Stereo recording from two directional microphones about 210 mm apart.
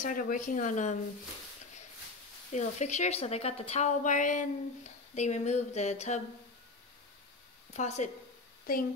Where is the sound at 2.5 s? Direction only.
35° left (ahead or behind).